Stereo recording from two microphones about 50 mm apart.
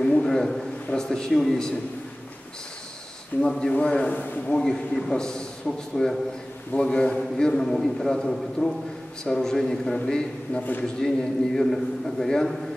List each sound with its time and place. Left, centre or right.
0.0 s a sound: centre
0.9 s a man's voice: centre
3.4 s a man's voice: centre
4.1 s a man's voice: left
4.5 s a man's voice: centre